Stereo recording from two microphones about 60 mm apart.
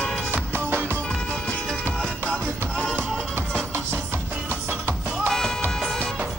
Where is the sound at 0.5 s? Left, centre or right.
Right.